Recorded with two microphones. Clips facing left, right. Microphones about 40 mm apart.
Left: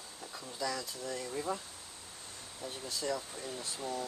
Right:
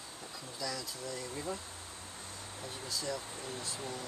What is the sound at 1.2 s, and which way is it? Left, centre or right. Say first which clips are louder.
Speech: left 4 dB; centre.